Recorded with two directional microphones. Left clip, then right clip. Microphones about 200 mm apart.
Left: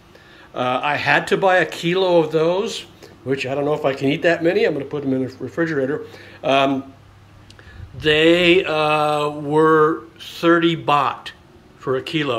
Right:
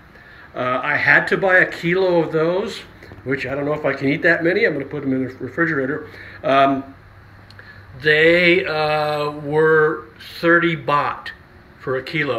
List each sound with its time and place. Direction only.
0.6 s speech: 25° left (ahead or behind)
8.0 s speech: 25° left (ahead or behind)